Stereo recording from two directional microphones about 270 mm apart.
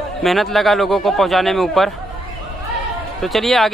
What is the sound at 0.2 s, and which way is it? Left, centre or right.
A man's voice, centre.